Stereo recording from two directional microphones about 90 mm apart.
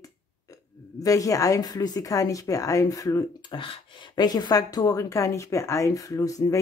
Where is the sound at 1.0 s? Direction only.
40° left (ahead or behind).